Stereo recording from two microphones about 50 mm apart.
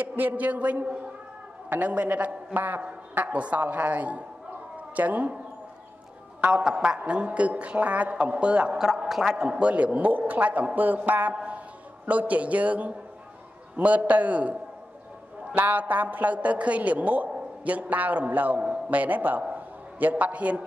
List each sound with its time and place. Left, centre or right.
0.0 s a woman's voice: right
1.8 s a woman's voice: right
3.3 s a man's voice: right
6.5 s a man's voice: centre
8.7 s a man's voice: centre; by 14.5 s right
15.5 s a woman's voice: right
19.5 s a sound: right